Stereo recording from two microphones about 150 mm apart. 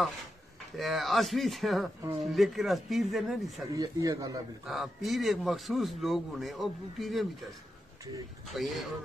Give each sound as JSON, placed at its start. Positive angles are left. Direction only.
{"t": 0.7, "sound": "a man's voice", "side_deg": 0}
{"t": 3.7, "sound": "speech", "side_deg": -20}
{"t": 4.6, "sound": "a man's voice", "side_deg": 0}
{"t": 8.5, "sound": "a man's voice", "side_deg": 0}